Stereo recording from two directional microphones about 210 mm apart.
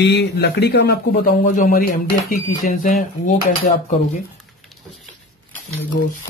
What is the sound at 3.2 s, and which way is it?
Dishes, 35° left (ahead or behind).